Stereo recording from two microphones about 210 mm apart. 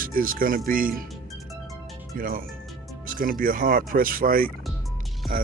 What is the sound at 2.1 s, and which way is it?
Speech, 45° right (ahead or behind).